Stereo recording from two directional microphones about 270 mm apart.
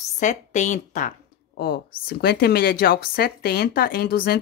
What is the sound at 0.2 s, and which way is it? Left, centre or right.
A woman's voice, left.